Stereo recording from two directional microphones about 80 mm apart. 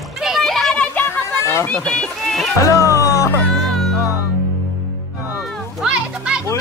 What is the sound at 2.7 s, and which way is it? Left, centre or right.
Music, left.